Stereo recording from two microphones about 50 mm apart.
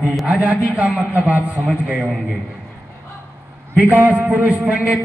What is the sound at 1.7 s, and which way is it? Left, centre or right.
Speech, centre.